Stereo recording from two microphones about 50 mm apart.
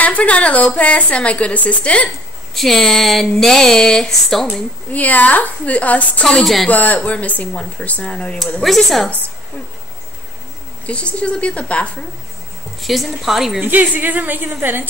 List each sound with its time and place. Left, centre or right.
0.0 s a woman's voice: left
2.5 s speech: centre
4.9 s a woman's voice: left
6.4 s speech: centre
6.7 s a woman's voice: left
8.6 s speech: centre
10.9 s a woman's voice: left
12.8 s speech: centre
13.6 s a woman's voice: right